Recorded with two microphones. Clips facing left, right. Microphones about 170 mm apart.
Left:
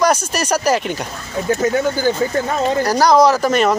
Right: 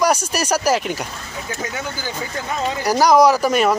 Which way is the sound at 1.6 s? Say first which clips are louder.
Left 11 dB; 50° left (ahead or behind).